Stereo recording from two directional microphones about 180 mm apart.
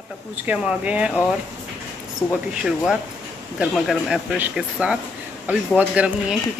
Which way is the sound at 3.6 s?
Centre (ahead or behind).